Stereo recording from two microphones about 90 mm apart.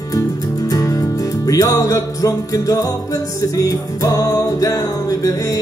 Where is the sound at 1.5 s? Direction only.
40° left (ahead or behind).